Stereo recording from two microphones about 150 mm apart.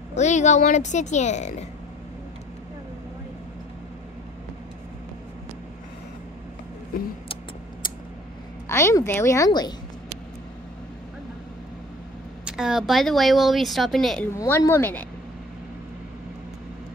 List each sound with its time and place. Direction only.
0.1 s speech: 50° left (ahead or behind)
8.6 s a woman's voice: 20° left (ahead or behind)
12.4 s speech: 5° right (ahead or behind)
14.3 s speech: 20° left (ahead or behind)